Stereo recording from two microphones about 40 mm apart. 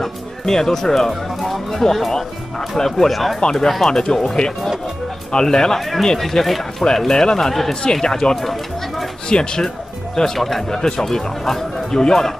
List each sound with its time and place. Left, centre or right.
0.0 s speech: centre
5.8 s speech: centre
6.8 s speech: centre
8.4 s speech: centre
9.3 s speech: left